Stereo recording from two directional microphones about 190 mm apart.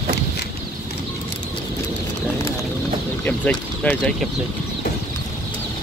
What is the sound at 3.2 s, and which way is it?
Speech, 10° left (ahead or behind).